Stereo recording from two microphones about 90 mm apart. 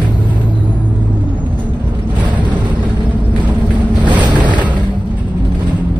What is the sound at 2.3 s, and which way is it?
Vehicle, 15° right (ahead or behind).